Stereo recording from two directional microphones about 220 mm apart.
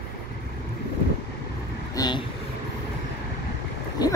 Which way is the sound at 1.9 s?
20° left (ahead or behind).